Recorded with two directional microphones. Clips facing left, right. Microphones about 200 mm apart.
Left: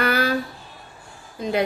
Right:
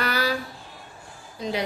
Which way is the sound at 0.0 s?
55° left (ahead or behind).